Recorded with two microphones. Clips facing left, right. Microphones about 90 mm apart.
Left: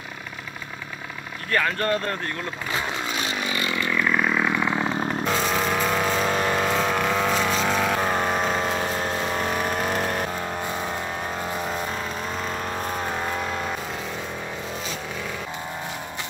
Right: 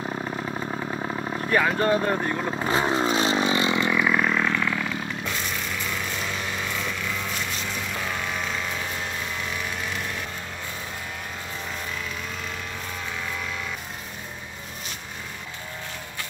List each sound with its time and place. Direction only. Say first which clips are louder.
1.5 s speech: right 2 dB; 10° right (ahead or behind)
2.7 s vehicle: right 6 dB; 30° right (ahead or behind)
3.9 s vehicle: even; 5° right (ahead or behind); by 4.7 s 15° left (ahead or behind)
4.7 s chainsaw: left 5 dB; 40° left (ahead or behind)
5.3 s vehicle: left 8 dB; 70° left (ahead or behind)
8.0 s vehicle: left 7 dB; 45° left (ahead or behind)